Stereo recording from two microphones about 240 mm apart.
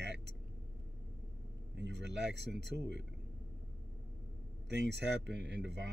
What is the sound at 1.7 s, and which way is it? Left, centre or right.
Speech, right.